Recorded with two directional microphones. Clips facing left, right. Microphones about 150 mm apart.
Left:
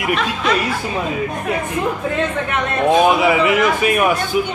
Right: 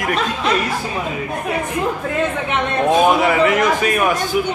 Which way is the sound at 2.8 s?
Centre (ahead or behind).